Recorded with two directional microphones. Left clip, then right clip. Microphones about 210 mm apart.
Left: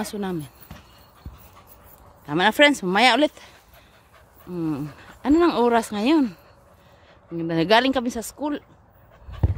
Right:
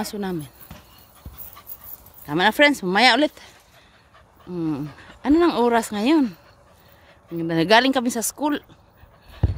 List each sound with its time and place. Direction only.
0.0 s speech: 5° right (ahead or behind)
2.2 s speech: 5° right (ahead or behind)
4.5 s speech: 5° right (ahead or behind); by 8.6 s 25° right (ahead or behind)
9.4 s a sound: 45° right (ahead or behind)